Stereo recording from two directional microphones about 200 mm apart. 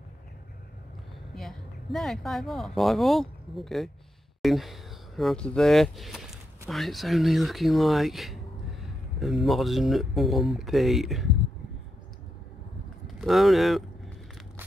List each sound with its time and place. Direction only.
1.3 s speech: centre (ahead or behind)
13.0 s speech: centre (ahead or behind)